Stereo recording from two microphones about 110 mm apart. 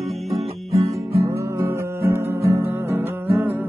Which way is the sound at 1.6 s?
25° right (ahead or behind).